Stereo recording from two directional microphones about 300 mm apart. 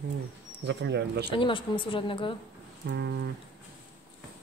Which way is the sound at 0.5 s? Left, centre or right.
Right.